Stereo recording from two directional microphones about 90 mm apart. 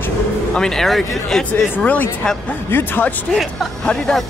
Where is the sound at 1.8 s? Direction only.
15° left (ahead or behind).